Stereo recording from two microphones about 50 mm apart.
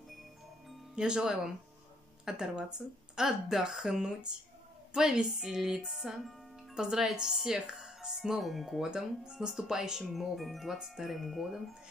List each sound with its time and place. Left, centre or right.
0.9 s speech: centre
8.9 s speech: centre
10.1 s speech: centre